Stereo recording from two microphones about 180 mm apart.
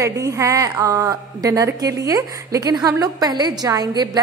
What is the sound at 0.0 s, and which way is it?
A woman's voice, 15° right (ahead or behind).